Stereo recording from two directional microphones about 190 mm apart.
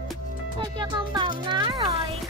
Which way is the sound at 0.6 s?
25° right (ahead or behind).